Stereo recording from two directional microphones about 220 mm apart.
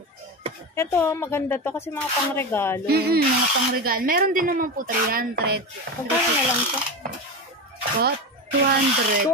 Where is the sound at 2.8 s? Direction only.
45° right (ahead or behind).